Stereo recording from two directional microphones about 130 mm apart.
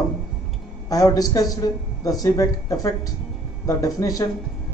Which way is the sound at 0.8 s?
30° left (ahead or behind).